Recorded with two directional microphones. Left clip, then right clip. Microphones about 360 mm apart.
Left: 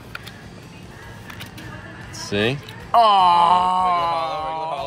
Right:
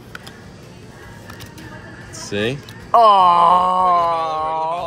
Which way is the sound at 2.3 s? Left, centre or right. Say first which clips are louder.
Even; centre.